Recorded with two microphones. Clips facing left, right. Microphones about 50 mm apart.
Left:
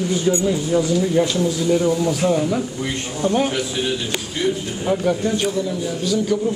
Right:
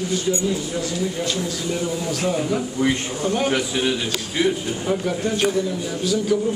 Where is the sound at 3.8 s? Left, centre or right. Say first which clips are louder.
Even; centre.